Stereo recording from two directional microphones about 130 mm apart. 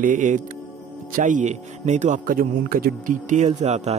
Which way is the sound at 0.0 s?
80° right.